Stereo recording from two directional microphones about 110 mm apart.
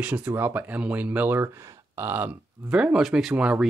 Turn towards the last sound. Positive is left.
turn(degrees=-10)  # may be behind; listen again after turning